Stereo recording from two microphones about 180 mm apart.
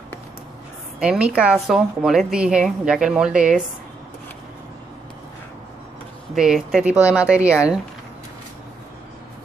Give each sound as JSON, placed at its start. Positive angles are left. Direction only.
{"t": 0.9, "sound": "a woman's voice", "side_deg": -5}
{"t": 6.3, "sound": "speech", "side_deg": 0}